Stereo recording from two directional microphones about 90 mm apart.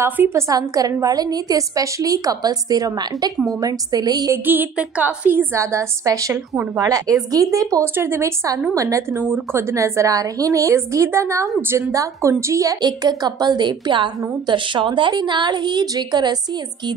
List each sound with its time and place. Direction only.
0.0 s a woman's voice: 30° right (ahead or behind)
0.5 s a woman's voice: 40° right (ahead or behind)
4.3 s a woman's voice: 20° right (ahead or behind); by 7.2 s 40° right (ahead or behind)
7.8 s a woman's voice: 25° right (ahead or behind)
9.2 s a woman's voice: 25° right (ahead or behind)
12.8 s a woman's voice: 50° right (ahead or behind)